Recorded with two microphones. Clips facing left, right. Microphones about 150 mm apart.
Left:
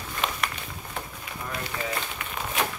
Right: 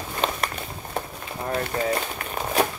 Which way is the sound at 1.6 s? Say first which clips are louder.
Right 6 dB; 40° right (ahead or behind).